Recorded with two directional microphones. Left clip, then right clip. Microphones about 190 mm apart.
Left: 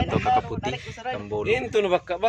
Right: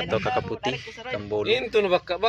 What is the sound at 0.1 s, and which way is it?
Speech, 5° right (ahead or behind).